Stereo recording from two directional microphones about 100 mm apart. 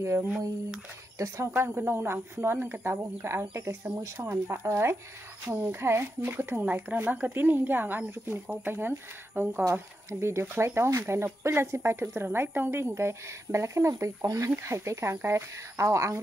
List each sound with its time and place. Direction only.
0.0 s speech: 25° right (ahead or behind)